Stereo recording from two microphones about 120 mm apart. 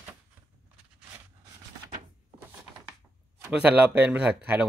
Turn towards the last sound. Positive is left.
turn(degrees=-10)  # may be behind; listen again after turning